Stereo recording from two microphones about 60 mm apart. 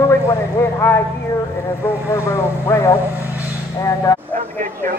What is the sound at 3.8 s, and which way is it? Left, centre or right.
Speech, left.